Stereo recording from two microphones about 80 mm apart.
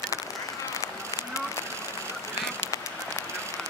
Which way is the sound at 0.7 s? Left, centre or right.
Left.